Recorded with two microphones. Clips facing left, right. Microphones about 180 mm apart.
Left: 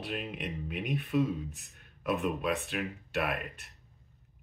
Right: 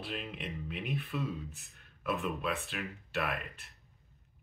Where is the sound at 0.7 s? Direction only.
45° left (ahead or behind).